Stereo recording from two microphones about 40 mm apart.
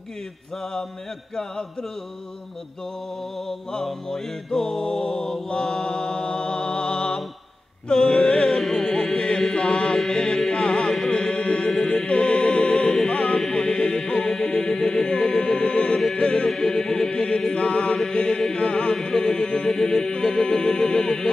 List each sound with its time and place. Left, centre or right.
1.3 s music: centre
3.3 s music: centre; by 8.5 s left
8.5 s music: centre
9.6 s chant: left
9.9 s chant: centre
11.1 s music: left
16.4 s music: centre
17.1 s chant: left
17.6 s mantra: left
18.5 s music: left
19.0 s a sound: centre
20.1 s music: centre